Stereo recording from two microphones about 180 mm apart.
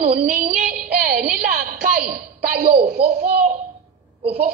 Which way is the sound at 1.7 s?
60° right (ahead or behind).